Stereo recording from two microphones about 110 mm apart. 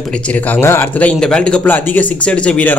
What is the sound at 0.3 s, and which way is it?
Speech, 15° left (ahead or behind).